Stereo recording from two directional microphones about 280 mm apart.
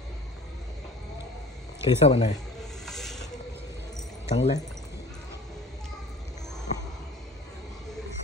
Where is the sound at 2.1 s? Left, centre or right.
Left.